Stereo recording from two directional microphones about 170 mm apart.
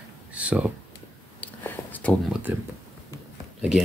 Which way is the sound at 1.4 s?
10° left (ahead or behind).